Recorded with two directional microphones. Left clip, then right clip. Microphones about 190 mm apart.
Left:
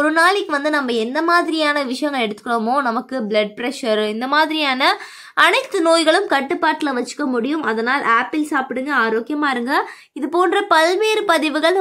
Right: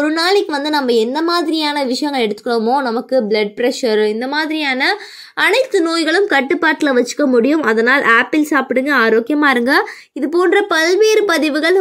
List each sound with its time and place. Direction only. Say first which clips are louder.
0.0 s a woman's voice: right 1 dB; centre (ahead or behind)
6.5 s speech: right 5 dB; 20° right (ahead or behind)
10.2 s a woman's voice: right 3 dB; centre (ahead or behind)